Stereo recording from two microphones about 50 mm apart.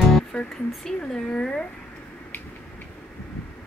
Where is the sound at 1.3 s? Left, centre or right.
Centre.